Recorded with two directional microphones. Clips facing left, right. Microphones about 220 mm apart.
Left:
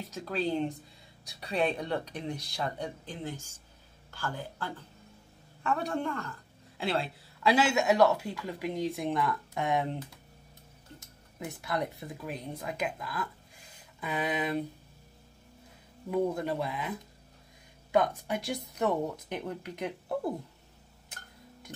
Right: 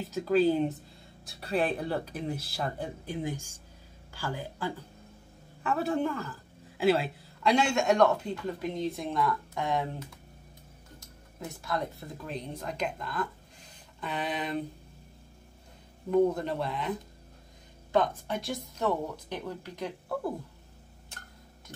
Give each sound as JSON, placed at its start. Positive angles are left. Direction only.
{"t": 0.0, "sound": "a woman's voice", "side_deg": 0}
{"t": 11.3, "sound": "speech", "side_deg": 15}
{"t": 16.1, "sound": "speech", "side_deg": 10}
{"t": 17.9, "sound": "speech", "side_deg": 15}